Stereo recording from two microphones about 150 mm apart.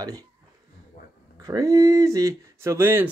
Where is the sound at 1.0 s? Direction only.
65° left (ahead or behind).